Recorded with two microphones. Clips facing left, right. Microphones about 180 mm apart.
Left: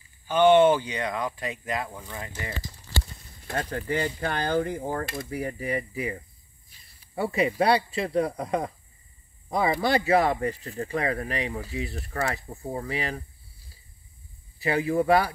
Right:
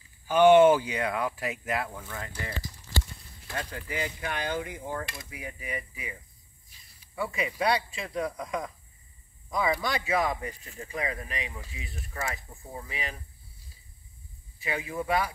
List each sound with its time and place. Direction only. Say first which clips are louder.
0.3 s speech: even; 10° right (ahead or behind)
1.9 s speech: left 1 dB; 15° left (ahead or behind)
3.4 s speech: left 6 dB; 50° left (ahead or behind)
3.8 s speech: left 7 dB; 35° left (ahead or behind)
7.2 s speech: left 6 dB; 40° left (ahead or behind)
10.4 s speech: left 10 dB; 65° left (ahead or behind)
11.2 s speech: left 8 dB; 35° left (ahead or behind)
12.4 s speech: left 9 dB; 45° left (ahead or behind)
14.6 s speech: left 9 dB; 35° left (ahead or behind)